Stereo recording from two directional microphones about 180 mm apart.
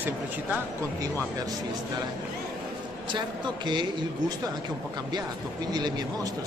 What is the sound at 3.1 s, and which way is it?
Speech, 25° right (ahead or behind).